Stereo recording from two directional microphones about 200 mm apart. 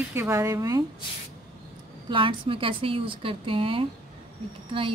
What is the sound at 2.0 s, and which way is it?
Speech, 25° right (ahead or behind).